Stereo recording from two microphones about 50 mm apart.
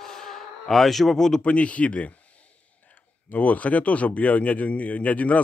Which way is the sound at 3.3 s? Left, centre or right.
Left.